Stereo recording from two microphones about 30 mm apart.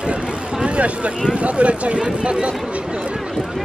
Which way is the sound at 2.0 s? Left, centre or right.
Right.